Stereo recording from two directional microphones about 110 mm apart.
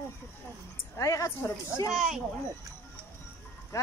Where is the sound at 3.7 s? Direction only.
30° left (ahead or behind).